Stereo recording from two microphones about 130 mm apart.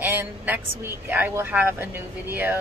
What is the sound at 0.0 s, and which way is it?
Speech, 20° right (ahead or behind).